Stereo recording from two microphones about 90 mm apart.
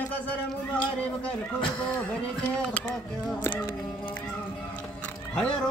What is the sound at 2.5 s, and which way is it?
Speech, 10° left (ahead or behind).